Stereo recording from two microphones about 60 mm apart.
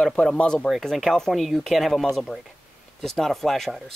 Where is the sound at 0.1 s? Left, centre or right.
Centre.